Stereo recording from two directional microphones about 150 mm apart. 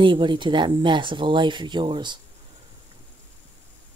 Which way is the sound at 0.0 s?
30° right (ahead or behind).